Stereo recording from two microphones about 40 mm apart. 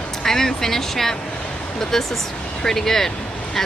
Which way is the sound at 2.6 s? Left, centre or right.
Centre.